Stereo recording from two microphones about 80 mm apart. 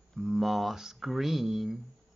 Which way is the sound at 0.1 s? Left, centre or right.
Centre.